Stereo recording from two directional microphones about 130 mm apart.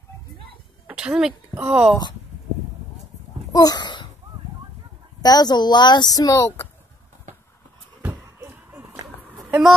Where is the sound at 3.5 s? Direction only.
30° left (ahead or behind).